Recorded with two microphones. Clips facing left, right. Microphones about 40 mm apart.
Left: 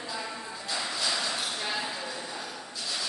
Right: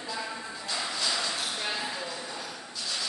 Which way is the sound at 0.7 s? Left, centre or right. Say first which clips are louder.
Even; centre.